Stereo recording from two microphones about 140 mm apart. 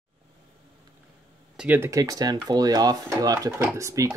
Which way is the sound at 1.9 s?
25° right (ahead or behind).